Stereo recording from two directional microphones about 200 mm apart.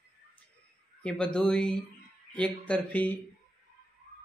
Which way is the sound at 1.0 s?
5° left (ahead or behind).